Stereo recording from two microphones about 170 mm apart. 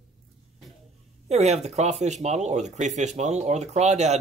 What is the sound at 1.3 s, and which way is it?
Speech, 40° right (ahead or behind).